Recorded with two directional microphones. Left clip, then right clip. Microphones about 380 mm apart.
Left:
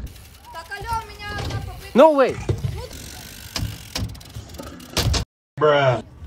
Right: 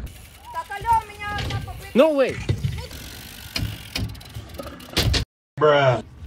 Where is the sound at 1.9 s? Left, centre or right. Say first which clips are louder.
Left 4 dB; centre.